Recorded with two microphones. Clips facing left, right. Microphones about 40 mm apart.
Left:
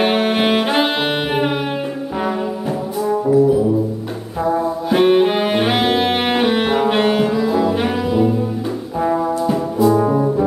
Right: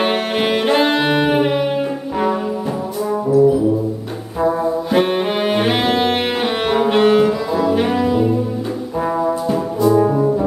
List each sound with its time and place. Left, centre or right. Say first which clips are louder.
0.0 s saxophone: left 2 dB; centre
4.8 s bowed string instrument: left 6 dB; centre
9.0 s brass instrument: left 1 dB; centre